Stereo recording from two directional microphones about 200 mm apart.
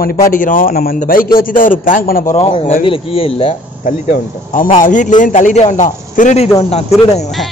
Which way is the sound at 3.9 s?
40° left (ahead or behind).